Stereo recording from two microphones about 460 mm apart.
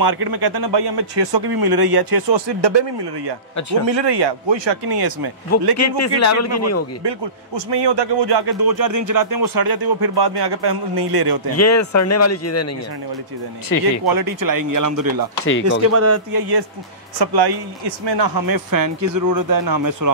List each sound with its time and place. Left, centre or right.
0.0 s a man's voice: right
5.8 s speech: left
7.0 s a man's voice: right
11.5 s speech: left
13.7 s speech: left
14.0 s a man's voice: right
15.4 s speech: left
15.9 s speech: right
16.3 s a man's voice: right